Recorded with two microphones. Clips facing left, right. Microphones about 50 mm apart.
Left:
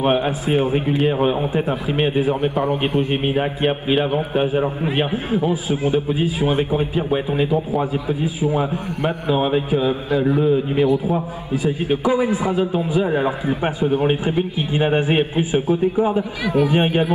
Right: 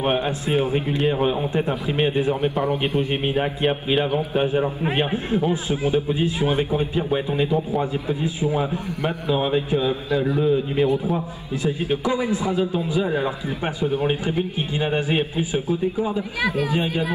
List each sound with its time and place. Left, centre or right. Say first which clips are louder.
0.0 s a man's voice: left 4 dB; centre
2.5 s speech: left 2 dB; left
3.3 s a man's voice: left 2 dB; centre; by 16.2 s left
16.5 s speech: left 6 dB; left